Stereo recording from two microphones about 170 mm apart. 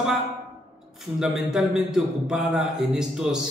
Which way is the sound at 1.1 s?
5° right (ahead or behind).